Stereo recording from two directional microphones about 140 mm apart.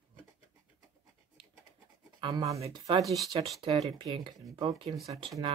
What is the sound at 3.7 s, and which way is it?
Speech, 45° right (ahead or behind).